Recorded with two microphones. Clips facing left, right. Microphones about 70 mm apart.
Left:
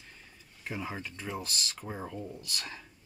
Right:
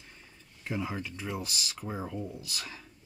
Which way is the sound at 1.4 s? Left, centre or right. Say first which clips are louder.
Right 1 dB; centre.